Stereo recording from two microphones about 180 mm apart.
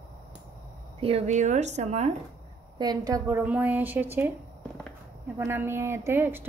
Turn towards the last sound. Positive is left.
turn(degrees=-10)  # may be behind; listen again after turning